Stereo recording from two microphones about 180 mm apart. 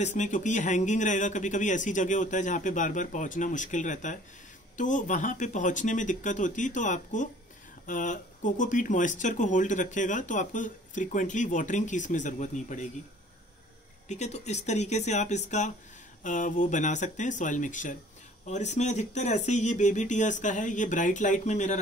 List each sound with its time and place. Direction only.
0.0 s speech: 40° left (ahead or behind)
14.0 s speech: 40° left (ahead or behind)